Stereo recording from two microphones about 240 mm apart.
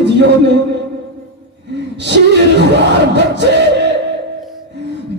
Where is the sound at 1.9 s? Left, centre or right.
Right.